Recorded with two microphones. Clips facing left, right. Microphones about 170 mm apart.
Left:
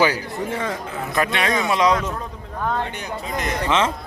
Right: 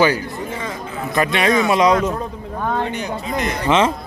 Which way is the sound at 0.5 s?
60° left (ahead or behind).